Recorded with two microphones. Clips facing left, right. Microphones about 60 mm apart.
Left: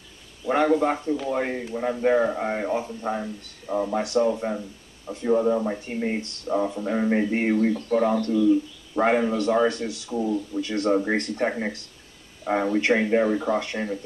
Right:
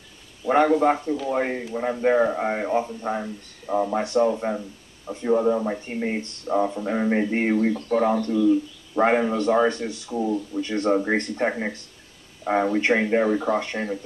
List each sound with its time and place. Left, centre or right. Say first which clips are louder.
0.5 s speech: right 3 dB; centre